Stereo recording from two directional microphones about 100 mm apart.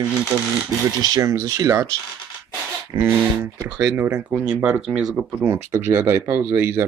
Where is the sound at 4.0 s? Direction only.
25° right (ahead or behind).